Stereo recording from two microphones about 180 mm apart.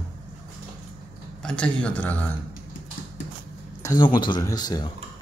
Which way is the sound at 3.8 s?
20° left (ahead or behind).